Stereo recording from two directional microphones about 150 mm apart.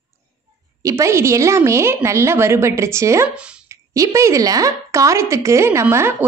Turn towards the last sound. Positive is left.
turn(degrees=-15)  # may be behind; listen again after turning